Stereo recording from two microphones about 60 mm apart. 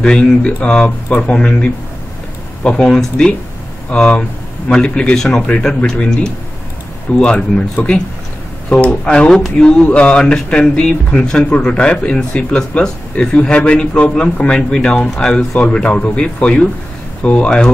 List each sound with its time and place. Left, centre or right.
0.0 s speech: centre